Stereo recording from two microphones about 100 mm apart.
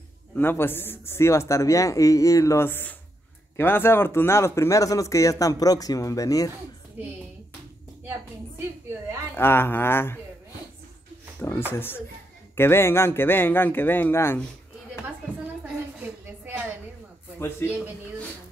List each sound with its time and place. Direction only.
0.4 s speech: 20° left (ahead or behind)
7.0 s speech: 15° right (ahead or behind)
9.3 s speech: 20° left (ahead or behind)
11.3 s speech: 20° left (ahead or behind)
16.0 s a sound: 20° right (ahead or behind)
17.4 s speech: 25° left (ahead or behind)